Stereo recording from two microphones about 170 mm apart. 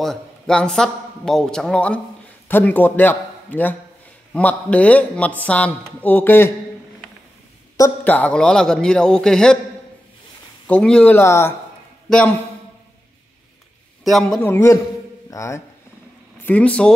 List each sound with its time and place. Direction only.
0.0 s a man's voice: 5° left (ahead or behind)
7.7 s speech: 15° left (ahead or behind)
10.7 s speech: 5° left (ahead or behind)
14.0 s speech: centre (ahead or behind)